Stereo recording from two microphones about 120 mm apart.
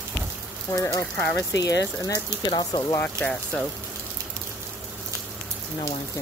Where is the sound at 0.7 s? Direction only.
30° left (ahead or behind).